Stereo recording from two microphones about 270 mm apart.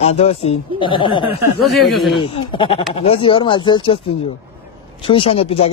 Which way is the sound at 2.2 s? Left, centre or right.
Centre.